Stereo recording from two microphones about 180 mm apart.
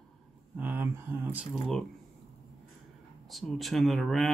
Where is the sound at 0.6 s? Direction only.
10° right (ahead or behind).